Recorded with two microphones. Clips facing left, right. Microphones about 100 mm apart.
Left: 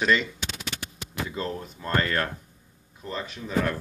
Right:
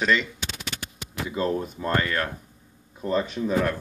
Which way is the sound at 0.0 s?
15° left (ahead or behind).